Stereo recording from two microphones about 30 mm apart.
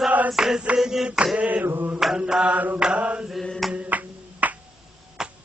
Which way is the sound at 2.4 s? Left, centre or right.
Right.